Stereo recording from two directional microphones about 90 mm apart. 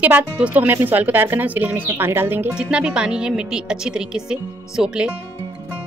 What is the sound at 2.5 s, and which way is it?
Speech, 10° right (ahead or behind).